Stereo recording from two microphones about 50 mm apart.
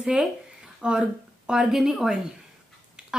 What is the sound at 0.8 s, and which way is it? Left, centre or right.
Speech, centre.